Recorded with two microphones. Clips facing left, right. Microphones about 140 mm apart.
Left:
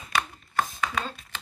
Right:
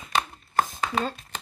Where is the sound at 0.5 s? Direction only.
35° right (ahead or behind).